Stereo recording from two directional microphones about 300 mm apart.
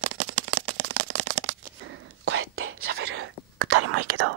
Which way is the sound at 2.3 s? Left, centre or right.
Right.